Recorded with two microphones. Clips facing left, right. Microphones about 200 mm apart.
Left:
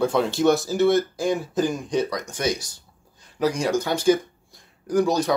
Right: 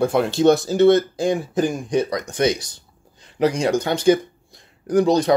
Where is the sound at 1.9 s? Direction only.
55° right (ahead or behind).